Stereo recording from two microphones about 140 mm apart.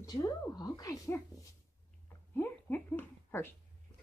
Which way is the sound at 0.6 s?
25° left (ahead or behind).